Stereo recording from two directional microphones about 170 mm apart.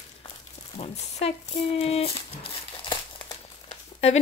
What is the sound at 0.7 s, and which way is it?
Speech, 40° left (ahead or behind).